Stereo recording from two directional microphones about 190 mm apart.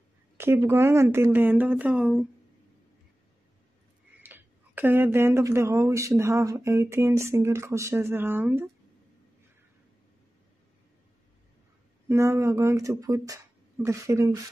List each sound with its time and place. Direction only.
0.4 s speech: 10° right (ahead or behind)
4.2 s speech: 10° right (ahead or behind)
12.1 s speech: 15° right (ahead or behind)